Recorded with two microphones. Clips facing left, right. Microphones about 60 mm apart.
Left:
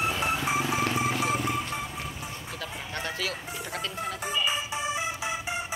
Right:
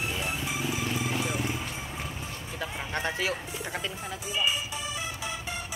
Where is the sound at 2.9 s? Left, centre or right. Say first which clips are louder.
Right 3 dB; right.